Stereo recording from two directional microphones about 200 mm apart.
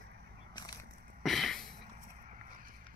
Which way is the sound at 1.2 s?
Centre (ahead or behind).